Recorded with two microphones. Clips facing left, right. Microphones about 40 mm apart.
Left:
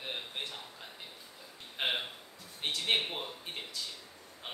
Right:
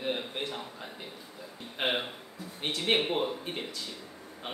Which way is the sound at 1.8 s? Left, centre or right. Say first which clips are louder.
Right 4 dB; centre.